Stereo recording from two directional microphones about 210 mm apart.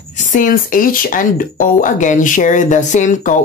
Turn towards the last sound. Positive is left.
turn(degrees=35)  # may be behind; listen again after turning